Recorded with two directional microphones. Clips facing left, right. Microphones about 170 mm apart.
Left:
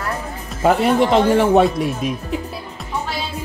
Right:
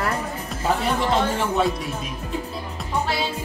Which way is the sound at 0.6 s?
65° left (ahead or behind).